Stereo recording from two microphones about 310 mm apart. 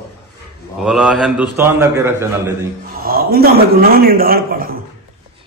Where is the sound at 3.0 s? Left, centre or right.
Right.